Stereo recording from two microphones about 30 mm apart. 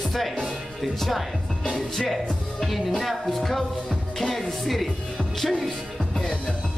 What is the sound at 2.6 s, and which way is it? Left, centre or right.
Music, centre.